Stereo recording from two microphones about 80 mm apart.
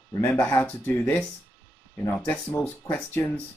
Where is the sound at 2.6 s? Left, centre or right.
Left.